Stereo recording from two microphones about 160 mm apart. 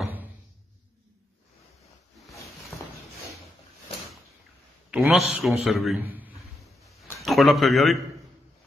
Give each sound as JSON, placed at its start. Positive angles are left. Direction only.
{"t": 2.7, "sound": "a sound", "side_deg": 15}
{"t": 4.9, "sound": "a man's voice", "side_deg": 0}
{"t": 7.2, "sound": "speech", "side_deg": 0}